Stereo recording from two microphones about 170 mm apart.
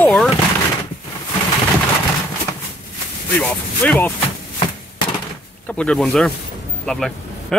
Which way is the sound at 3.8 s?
10° left (ahead or behind).